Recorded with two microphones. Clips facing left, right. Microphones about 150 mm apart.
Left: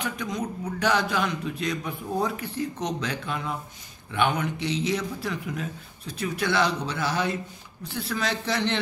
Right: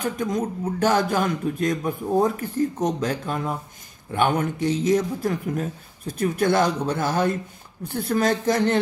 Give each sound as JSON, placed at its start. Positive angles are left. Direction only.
{"t": 0.0, "sound": "speech", "side_deg": -45}